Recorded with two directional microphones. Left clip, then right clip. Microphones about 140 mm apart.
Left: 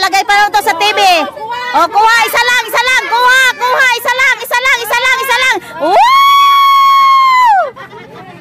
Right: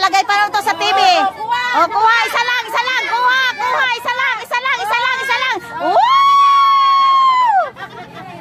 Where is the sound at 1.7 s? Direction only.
40° left (ahead or behind).